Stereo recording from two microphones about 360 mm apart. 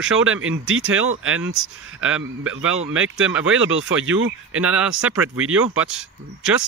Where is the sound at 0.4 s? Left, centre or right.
Right.